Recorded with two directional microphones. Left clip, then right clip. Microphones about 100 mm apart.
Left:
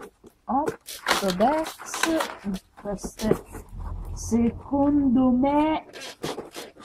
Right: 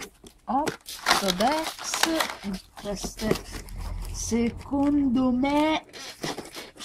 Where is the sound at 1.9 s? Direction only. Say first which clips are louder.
Even; 30° right (ahead or behind).